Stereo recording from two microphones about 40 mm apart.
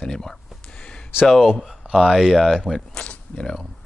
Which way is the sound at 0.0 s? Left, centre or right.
Centre.